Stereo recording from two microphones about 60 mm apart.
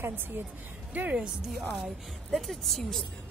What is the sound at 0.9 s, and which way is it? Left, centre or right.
Speech, right.